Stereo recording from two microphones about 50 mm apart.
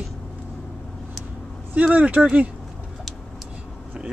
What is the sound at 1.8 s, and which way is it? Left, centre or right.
Speech, right.